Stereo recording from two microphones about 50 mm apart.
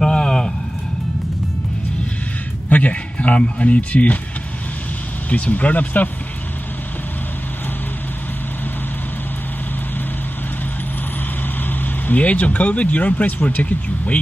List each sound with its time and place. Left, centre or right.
0.0 s vehicle: centre
2.7 s speech: left
5.3 s speech: left
11.8 s speech: left